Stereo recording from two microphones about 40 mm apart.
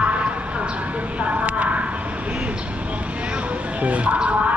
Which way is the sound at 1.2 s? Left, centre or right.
Right.